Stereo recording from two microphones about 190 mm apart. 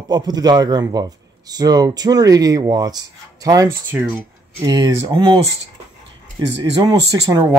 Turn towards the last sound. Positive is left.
turn(degrees=-20)  # may be behind; listen again after turning